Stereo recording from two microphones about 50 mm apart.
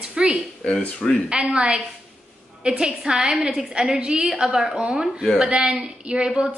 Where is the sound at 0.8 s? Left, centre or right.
Centre.